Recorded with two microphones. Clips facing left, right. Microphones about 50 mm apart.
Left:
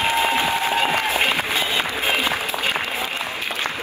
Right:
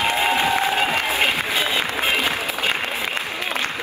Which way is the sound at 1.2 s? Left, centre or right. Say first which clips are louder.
Even; left.